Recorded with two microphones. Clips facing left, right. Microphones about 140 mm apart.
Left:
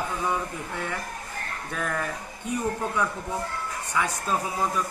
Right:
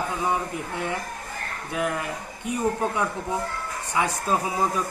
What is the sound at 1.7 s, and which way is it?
Speech, 15° right (ahead or behind).